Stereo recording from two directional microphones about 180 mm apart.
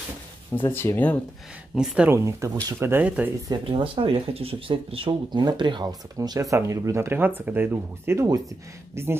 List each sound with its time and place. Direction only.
0.7 s speech: 10° left (ahead or behind)
1.8 s speech: 5° right (ahead or behind)
3.4 s speech: 25° right (ahead or behind)